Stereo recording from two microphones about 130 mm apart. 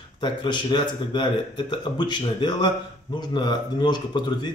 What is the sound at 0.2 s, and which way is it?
Speech, 35° left (ahead or behind).